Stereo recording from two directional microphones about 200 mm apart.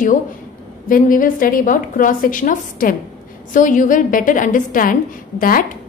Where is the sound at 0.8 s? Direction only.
45° left (ahead or behind).